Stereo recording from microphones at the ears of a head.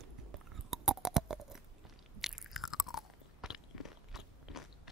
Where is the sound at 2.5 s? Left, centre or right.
Left.